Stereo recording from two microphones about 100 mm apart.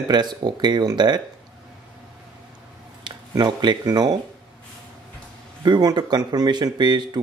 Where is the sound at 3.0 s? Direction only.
50° right (ahead or behind).